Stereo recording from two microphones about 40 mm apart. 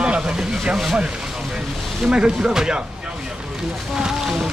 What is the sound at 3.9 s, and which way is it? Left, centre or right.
Speech, centre.